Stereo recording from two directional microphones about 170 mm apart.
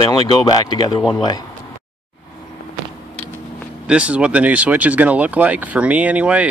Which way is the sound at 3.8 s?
5° right (ahead or behind).